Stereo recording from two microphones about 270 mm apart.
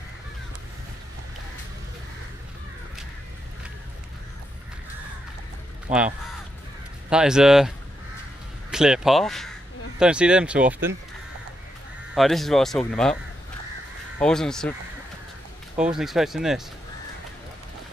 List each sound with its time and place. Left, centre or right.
5.9 s speech: centre
12.2 s speech: centre
14.2 s speech: centre
16.0 s speech: centre